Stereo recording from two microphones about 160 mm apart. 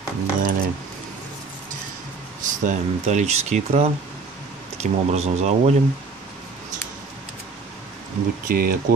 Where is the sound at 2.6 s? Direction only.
45° right (ahead or behind).